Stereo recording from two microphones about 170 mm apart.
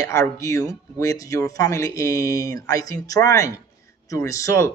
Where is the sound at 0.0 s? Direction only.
20° left (ahead or behind).